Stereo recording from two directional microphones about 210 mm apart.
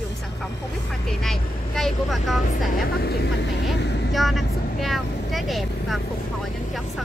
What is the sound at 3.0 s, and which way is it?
Speech, 50° left (ahead or behind).